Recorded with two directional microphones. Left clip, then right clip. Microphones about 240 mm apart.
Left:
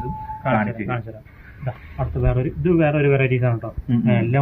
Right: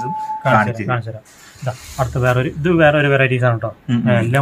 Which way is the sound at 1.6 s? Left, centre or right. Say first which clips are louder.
Right 8 dB; centre.